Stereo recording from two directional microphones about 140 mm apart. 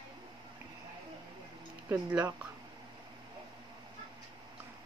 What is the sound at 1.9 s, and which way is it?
Speech, 10° right (ahead or behind).